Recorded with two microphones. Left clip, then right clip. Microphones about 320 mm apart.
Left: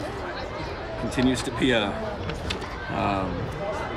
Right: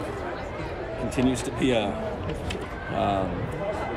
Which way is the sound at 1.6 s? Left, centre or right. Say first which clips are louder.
Left 1 dB; right.